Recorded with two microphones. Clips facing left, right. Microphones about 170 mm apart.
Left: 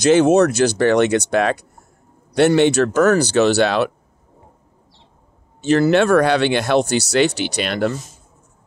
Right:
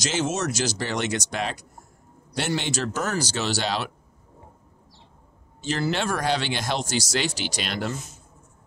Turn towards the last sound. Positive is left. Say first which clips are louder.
# left 9 dB
turn(degrees=60)  # may be behind; listen again after turning